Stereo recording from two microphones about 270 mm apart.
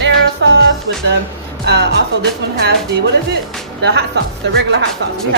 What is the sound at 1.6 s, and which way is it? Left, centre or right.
Speech, right.